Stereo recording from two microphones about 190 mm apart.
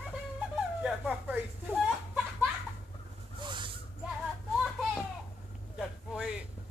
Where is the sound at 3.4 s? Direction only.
25° right (ahead or behind).